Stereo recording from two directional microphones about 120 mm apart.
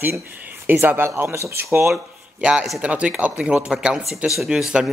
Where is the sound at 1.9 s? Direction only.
10° right (ahead or behind).